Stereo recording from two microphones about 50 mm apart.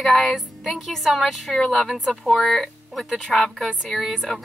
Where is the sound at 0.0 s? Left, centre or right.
Centre.